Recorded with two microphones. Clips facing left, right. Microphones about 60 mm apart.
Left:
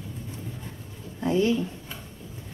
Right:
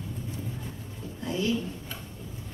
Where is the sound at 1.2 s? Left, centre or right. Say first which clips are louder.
Left 6 dB; left.